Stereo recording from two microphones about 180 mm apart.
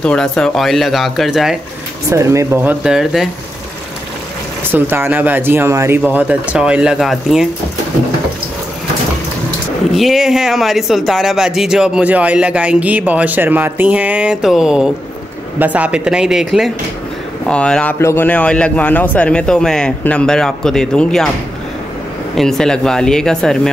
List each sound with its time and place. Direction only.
0.0 s speech: 5° left (ahead or behind)
2.0 s speech: 15° right (ahead or behind)
4.6 s speech: 10° right (ahead or behind)
9.9 s speech: centre (ahead or behind)
22.3 s speech: centre (ahead or behind)